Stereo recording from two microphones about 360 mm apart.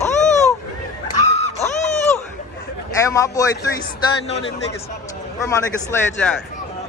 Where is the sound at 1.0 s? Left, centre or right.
Centre.